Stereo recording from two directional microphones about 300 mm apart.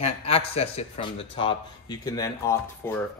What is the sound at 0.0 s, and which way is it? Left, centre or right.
A man's voice, centre.